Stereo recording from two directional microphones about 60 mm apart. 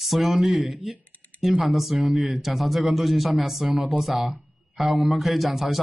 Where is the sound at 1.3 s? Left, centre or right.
Centre.